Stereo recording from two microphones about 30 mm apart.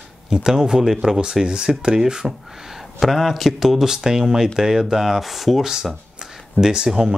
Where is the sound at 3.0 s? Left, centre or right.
Centre.